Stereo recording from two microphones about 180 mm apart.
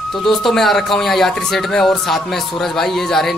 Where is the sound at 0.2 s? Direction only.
Centre (ahead or behind).